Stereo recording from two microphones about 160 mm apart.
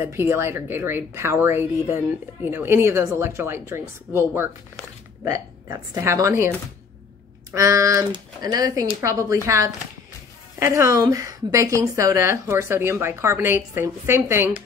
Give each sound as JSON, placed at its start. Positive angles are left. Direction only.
{"t": 0.0, "sound": "a woman's voice", "side_deg": -15}
{"t": 7.5, "sound": "a woman's voice", "side_deg": -20}
{"t": 10.6, "sound": "a woman's voice", "side_deg": -20}